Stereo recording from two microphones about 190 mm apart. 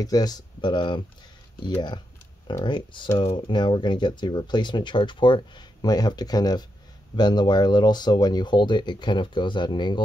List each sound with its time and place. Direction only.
0.0 s speech: 20° left (ahead or behind)